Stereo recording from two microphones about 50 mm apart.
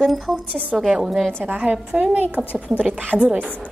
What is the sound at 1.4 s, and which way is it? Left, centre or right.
A woman's voice, right.